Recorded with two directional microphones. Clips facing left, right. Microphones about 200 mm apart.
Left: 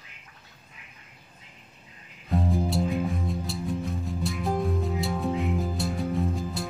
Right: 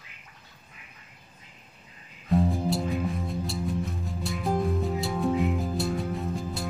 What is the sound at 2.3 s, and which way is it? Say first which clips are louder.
Music: right 1 dB; centre (ahead or behind).